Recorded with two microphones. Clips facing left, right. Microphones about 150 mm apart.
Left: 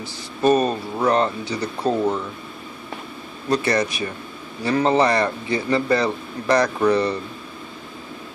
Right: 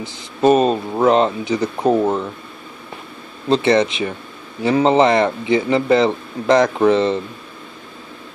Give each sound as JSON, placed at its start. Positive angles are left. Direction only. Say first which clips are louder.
{"t": 0.0, "sound": "a man's voice", "louder": "right 4 dB", "side_deg": -20}
{"t": 3.4, "sound": "a man's voice", "louder": "right 6 dB", "side_deg": -25}